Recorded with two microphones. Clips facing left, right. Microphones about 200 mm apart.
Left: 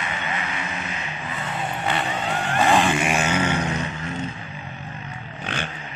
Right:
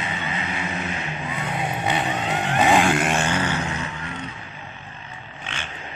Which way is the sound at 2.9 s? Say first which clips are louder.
Right 1 dB; centre (ahead or behind).